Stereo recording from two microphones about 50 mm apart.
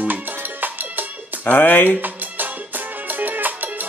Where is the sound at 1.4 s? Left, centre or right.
Left.